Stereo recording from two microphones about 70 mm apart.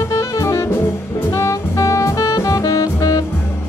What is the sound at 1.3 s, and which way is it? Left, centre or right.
Jazz, left.